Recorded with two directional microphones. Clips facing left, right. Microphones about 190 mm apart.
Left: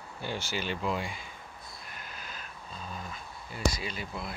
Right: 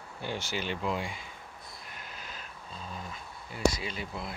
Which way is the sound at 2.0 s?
25° right (ahead or behind).